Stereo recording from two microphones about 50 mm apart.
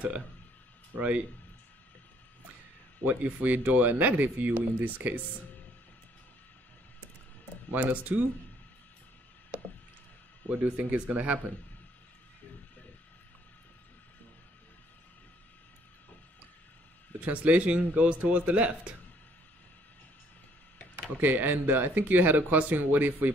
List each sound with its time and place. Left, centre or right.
0.9 s speech: right
3.1 s speech: right
7.7 s speech: right
10.5 s speech: right
17.2 s speech: right
21.2 s speech: right